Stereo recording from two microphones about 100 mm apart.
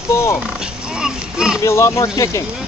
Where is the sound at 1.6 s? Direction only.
30° left (ahead or behind).